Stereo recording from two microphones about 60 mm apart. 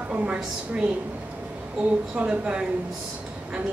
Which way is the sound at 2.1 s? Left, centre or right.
Centre.